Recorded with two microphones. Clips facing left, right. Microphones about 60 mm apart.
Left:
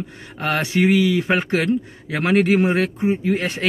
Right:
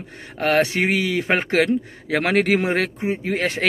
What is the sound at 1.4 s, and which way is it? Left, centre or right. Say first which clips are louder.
Speech: right 1 dB; right.